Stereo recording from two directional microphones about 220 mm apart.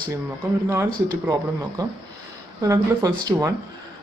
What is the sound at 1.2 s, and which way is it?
Speech, 15° right (ahead or behind).